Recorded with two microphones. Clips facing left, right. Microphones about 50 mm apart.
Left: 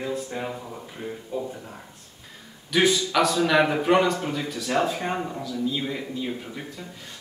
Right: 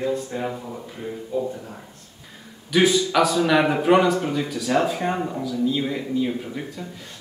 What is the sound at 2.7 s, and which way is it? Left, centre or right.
A man's voice, centre.